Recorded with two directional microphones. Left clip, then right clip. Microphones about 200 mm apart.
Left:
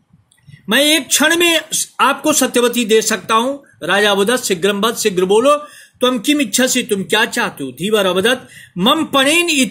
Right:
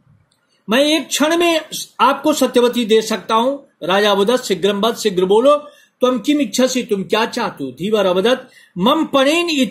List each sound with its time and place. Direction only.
0.7 s speech: 30° left (ahead or behind)